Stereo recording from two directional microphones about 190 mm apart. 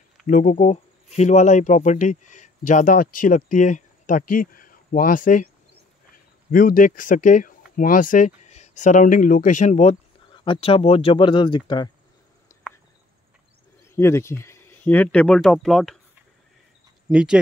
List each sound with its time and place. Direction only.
0.3 s speech: 40° left (ahead or behind)
6.5 s speech: 45° left (ahead or behind); by 11.9 s 25° left (ahead or behind)
13.9 s speech: 15° left (ahead or behind)
17.1 s speech: 5° right (ahead or behind)